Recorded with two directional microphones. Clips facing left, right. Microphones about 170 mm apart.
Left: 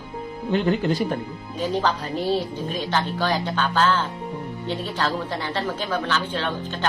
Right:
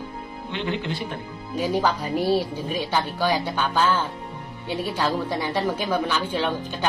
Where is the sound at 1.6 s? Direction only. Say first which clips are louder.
Right 1 dB; 10° right (ahead or behind).